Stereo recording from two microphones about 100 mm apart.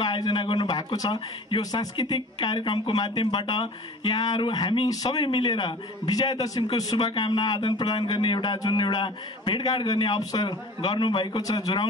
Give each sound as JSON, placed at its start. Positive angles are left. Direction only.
{"t": 0.0, "sound": "speech", "side_deg": 50}
{"t": 4.8, "sound": "speech", "side_deg": 40}
{"t": 5.2, "sound": "speech", "side_deg": 55}
{"t": 7.1, "sound": "speech", "side_deg": 55}